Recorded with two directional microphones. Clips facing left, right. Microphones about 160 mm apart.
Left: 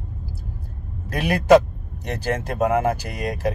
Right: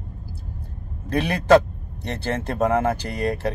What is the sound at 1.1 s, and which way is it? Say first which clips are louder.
Speech: left 1 dB; 10° left (ahead or behind).